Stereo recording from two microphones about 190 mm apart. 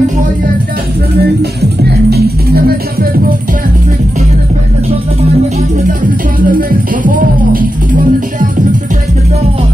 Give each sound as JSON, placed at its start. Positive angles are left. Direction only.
{"t": 2.0, "sound": "music", "side_deg": -55}
{"t": 6.4, "sound": "music", "side_deg": -45}